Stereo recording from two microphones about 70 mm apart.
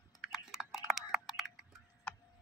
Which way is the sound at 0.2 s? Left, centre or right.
Centre.